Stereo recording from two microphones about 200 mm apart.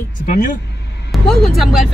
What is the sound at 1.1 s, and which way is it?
Speech, centre (ahead or behind).